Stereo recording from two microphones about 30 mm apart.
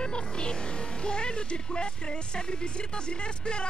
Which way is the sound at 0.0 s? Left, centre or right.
Left.